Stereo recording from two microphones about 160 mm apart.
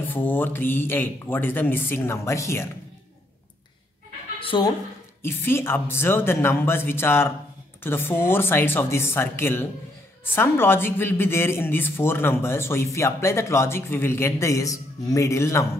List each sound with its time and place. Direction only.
0.1 s a woman's voice: 10° left (ahead or behind)
4.4 s a woman's voice: 30° left (ahead or behind)
5.2 s a woman's voice: 15° left (ahead or behind)